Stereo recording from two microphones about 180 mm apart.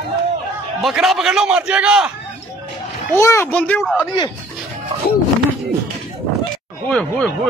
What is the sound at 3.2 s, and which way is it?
Speech, 15° left (ahead or behind).